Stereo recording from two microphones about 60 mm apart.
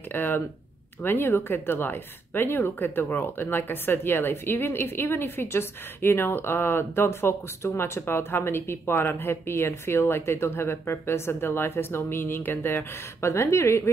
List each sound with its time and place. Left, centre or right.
0.1 s speech: left
13.3 s speech: left